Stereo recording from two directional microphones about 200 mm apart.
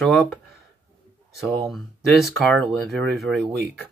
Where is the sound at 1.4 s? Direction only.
Centre (ahead or behind).